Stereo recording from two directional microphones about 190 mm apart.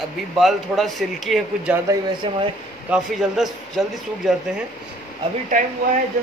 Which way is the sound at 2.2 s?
30° right (ahead or behind).